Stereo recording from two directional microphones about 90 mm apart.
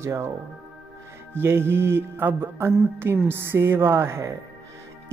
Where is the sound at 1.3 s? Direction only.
25° right (ahead or behind).